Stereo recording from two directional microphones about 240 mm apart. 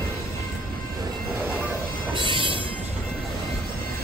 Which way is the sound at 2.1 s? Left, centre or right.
Right.